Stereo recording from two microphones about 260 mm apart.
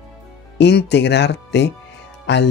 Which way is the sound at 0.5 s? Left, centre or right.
Left.